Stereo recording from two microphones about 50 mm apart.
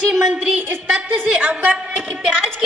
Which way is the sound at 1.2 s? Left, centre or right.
Right.